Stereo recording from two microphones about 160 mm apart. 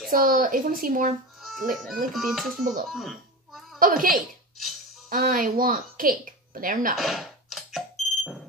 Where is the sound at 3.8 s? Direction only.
60° right (ahead or behind).